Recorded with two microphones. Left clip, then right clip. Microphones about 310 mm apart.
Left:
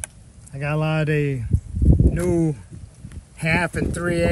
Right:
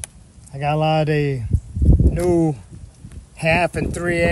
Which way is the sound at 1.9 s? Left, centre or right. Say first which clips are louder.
Even; centre.